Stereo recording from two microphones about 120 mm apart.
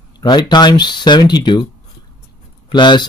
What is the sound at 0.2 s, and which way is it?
Speech, 40° left (ahead or behind).